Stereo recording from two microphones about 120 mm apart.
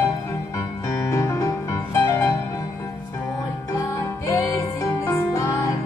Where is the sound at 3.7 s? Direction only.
25° left (ahead or behind).